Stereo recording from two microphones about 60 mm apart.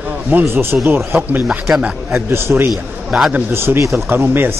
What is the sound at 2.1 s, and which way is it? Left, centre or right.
Speech, right.